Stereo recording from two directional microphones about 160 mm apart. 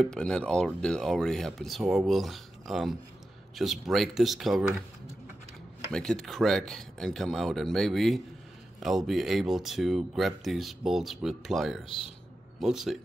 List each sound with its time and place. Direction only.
0.0 s speech: 5° left (ahead or behind)
5.9 s speech: 5° left (ahead or behind)
11.8 s a man's voice: 35° left (ahead or behind)
12.5 s speech: centre (ahead or behind)